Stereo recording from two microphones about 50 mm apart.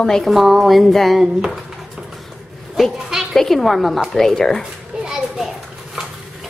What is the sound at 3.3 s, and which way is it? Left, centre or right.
A woman's voice, centre.